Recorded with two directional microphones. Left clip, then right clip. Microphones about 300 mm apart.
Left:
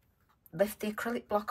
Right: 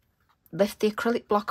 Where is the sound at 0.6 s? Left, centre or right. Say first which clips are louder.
Right 7 dB; centre.